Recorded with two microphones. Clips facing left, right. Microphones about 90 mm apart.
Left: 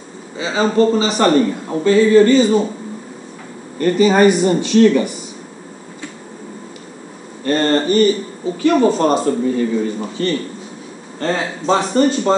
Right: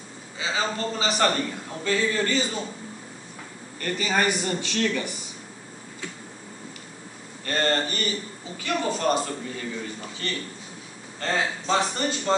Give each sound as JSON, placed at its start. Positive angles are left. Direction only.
{"t": 0.4, "sound": "a man's voice", "side_deg": 40}
{"t": 1.0, "sound": "speech", "side_deg": 25}
{"t": 1.3, "sound": "a man's voice", "side_deg": 35}
{"t": 3.8, "sound": "speech", "side_deg": 25}
{"t": 7.4, "sound": "a man's voice", "side_deg": 35}